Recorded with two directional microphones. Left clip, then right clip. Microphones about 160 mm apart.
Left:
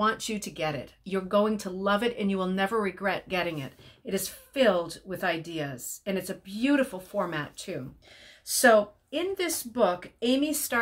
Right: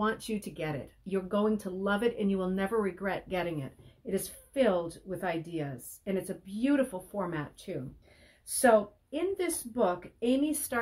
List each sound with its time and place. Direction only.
0.0 s speech: 5° left (ahead or behind)